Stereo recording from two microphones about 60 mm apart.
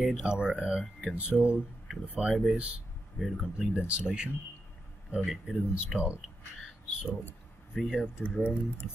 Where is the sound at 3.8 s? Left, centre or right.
Centre.